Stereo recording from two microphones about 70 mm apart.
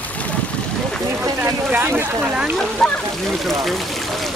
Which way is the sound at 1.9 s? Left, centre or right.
Centre.